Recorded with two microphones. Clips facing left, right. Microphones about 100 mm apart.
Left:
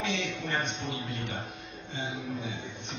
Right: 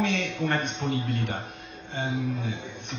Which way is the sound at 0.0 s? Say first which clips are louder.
Right 6 dB; 55° right (ahead or behind).